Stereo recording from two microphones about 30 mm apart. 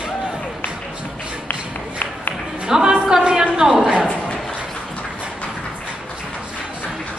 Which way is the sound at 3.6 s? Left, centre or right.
Right.